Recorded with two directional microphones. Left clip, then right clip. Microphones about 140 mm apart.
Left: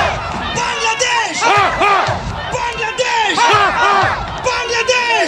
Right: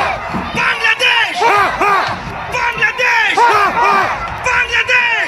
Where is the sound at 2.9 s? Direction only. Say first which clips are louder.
Right 2 dB; 65° left (ahead or behind).